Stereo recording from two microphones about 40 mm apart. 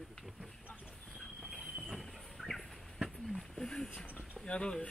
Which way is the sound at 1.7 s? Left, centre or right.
Centre.